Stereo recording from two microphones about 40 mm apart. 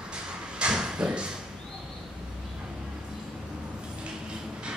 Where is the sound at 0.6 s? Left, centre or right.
Right.